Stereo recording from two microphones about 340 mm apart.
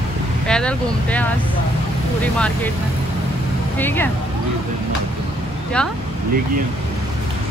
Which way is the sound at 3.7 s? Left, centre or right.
Centre.